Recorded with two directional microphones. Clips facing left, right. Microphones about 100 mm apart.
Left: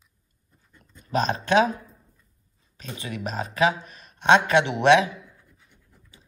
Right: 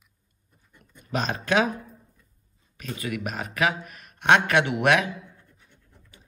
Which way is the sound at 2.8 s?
25° left (ahead or behind).